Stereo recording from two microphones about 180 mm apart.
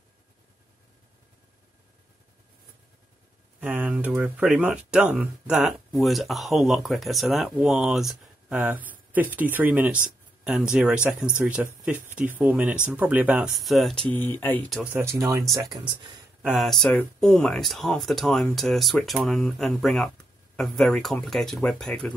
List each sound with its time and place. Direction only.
3.6 s speech: 10° right (ahead or behind)
14.1 s speech: 10° left (ahead or behind)
14.8 s speech: 10° right (ahead or behind)
16.4 s speech: centre (ahead or behind)